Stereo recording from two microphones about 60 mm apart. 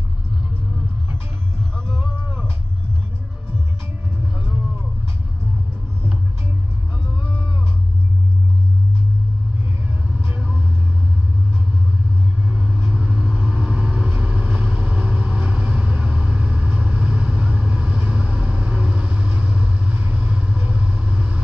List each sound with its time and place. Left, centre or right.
2.0 s a sound: right
10.3 s vehicle: right
12.4 s vehicle: centre